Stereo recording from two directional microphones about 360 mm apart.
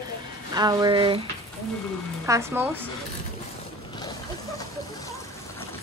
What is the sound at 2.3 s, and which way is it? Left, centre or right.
Speech, centre.